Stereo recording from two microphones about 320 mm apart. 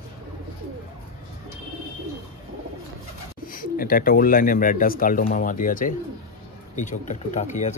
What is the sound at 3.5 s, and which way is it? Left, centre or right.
Speech, left.